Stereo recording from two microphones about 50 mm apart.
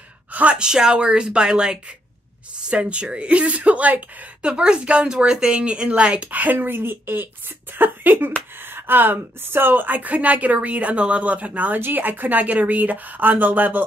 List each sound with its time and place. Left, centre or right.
0.3 s gasp: right
0.6 s speech: centre; by 4.3 s right
4.4 s speech: centre; by 13.8 s right